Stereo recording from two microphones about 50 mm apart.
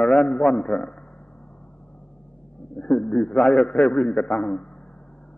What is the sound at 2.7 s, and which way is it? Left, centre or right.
Speech, left.